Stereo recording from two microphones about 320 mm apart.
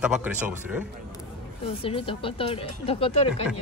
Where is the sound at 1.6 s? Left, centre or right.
Centre.